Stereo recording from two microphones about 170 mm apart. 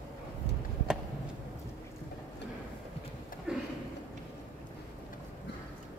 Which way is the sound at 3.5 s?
5° right (ahead or behind).